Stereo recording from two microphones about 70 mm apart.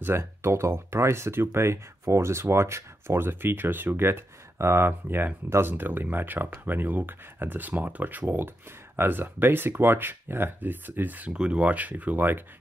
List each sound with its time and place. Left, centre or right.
0.0 s speech: right
11.3 s speech: centre